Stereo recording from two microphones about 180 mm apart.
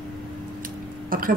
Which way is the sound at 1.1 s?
50° right (ahead or behind).